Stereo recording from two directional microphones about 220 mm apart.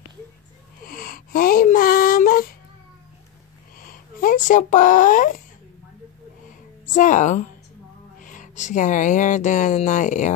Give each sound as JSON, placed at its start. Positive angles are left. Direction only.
{"t": 0.8, "sound": "a sound", "side_deg": 40}
{"t": 3.8, "sound": "speech", "side_deg": 40}
{"t": 6.9, "sound": "speech", "side_deg": 35}